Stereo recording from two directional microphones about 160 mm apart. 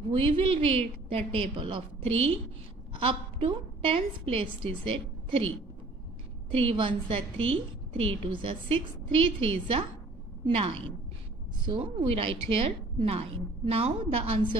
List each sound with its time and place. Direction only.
0.2 s a woman's voice: 35° right (ahead or behind)
6.5 s a woman's voice: 35° right (ahead or behind)